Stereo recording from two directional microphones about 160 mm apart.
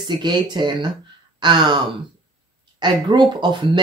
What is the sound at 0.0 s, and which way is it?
Speech, 25° right (ahead or behind).